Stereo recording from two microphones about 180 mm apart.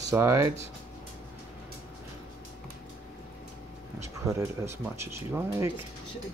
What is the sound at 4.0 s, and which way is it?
Speech, 15° right (ahead or behind).